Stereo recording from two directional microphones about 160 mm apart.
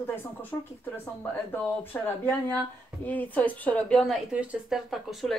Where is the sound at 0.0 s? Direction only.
10° left (ahead or behind).